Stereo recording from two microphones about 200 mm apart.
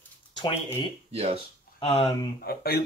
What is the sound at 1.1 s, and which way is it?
Speech, 30° right (ahead or behind).